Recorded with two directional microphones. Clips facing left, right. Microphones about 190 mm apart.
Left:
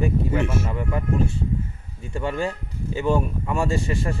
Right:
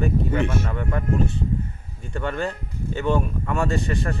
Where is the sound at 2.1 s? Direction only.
5° left (ahead or behind).